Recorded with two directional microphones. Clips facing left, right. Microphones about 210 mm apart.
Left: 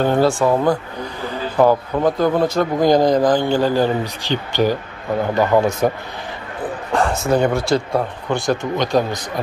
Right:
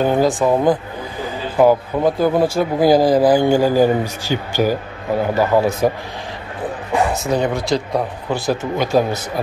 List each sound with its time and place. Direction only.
0.0 s a man's voice: 15° right (ahead or behind)
7.2 s a man's voice: centre (ahead or behind)